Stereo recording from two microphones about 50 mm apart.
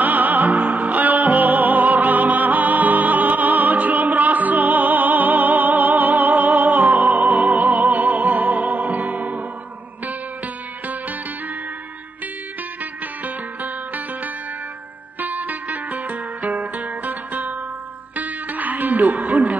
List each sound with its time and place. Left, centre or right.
0.0 s music: right
13.2 s music: right